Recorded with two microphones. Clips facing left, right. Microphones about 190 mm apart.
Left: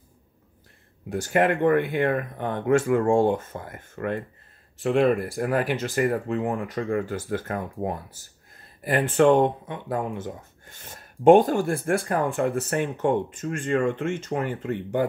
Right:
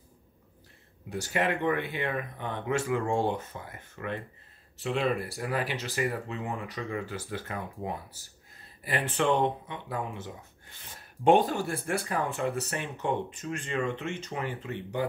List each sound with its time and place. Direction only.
1.1 s speech: 50° left (ahead or behind)